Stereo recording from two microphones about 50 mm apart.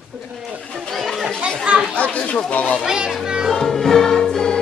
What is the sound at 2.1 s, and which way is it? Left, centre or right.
Speech, left.